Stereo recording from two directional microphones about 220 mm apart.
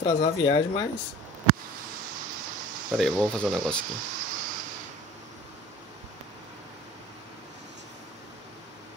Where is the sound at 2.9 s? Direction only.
Centre (ahead or behind).